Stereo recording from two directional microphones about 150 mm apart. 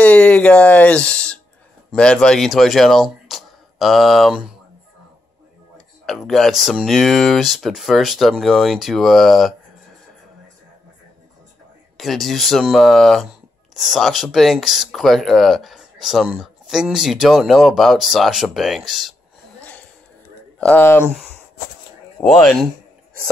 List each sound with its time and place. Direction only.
0.0 s speech: 10° left (ahead or behind)
6.0 s speech: centre (ahead or behind)
12.0 s speech: centre (ahead or behind)
20.5 s speech: 10° left (ahead or behind)
22.2 s speech: centre (ahead or behind)